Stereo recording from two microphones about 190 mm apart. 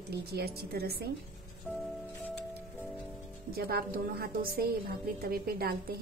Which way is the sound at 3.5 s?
55° right (ahead or behind).